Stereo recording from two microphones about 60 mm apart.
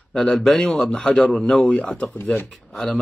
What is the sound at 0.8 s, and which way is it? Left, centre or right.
Speech, left.